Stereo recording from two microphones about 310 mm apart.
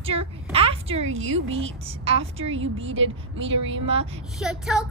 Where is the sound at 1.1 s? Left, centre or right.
Right.